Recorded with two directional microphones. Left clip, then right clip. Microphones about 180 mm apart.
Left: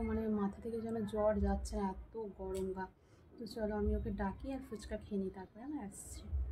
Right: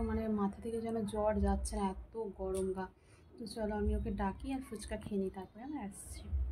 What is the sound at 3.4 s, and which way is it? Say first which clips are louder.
A woman's voice: right 1 dB; 5° right (ahead or behind).